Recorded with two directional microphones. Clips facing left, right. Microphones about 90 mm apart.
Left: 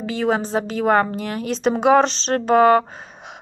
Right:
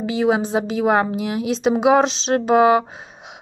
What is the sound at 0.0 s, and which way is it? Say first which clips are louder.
Speech: right 2 dB; 10° right (ahead or behind).